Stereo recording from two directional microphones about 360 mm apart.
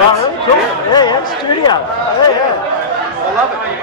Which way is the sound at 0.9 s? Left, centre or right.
Centre.